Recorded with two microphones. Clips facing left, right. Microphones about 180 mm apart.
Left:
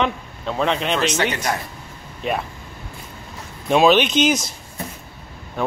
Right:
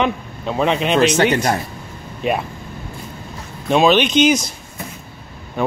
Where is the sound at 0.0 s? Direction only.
10° right (ahead or behind).